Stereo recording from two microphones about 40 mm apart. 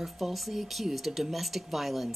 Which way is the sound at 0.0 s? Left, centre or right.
Centre.